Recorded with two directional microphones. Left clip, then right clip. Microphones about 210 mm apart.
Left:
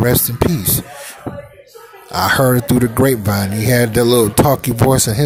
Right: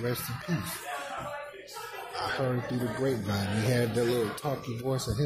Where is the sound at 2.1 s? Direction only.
45° left (ahead or behind).